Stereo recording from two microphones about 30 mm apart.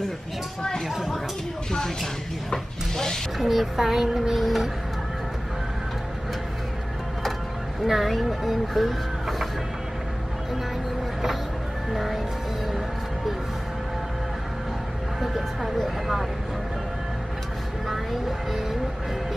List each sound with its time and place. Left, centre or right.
0.8 s speech: centre
2.5 s wood: centre
3.3 s a child's voice: centre
7.8 s a child's voice: centre
11.9 s a child's voice: centre
15.2 s a child's voice: centre